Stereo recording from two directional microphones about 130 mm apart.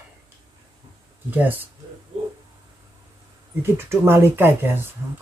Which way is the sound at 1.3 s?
15° right (ahead or behind).